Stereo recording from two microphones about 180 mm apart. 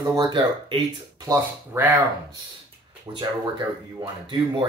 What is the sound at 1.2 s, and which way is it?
Speech, 15° right (ahead or behind).